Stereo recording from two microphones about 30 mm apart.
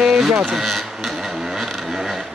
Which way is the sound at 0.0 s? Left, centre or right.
Centre.